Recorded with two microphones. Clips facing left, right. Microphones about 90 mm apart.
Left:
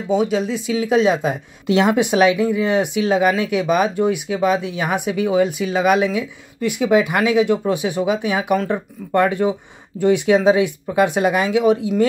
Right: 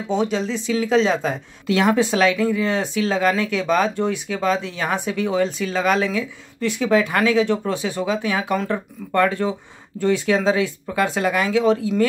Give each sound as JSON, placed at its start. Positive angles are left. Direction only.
{"t": 0.1, "sound": "speech", "side_deg": 10}